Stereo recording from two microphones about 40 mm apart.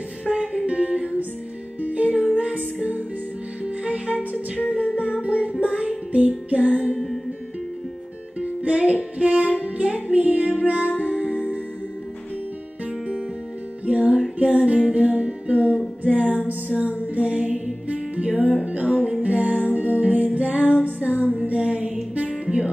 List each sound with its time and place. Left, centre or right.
0.2 s music: right
8.4 s music: right
13.8 s music: right
17.0 s mantra: right
17.8 s music: right
21.5 s mantra: right